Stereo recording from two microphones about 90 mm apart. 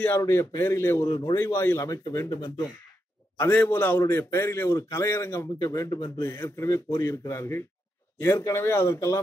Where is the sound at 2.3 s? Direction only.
50° left (ahead or behind).